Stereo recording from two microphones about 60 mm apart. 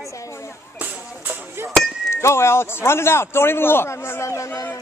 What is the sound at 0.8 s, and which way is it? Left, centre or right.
Speech, right.